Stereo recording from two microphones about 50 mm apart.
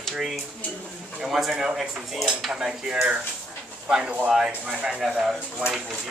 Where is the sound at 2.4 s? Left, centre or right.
Centre.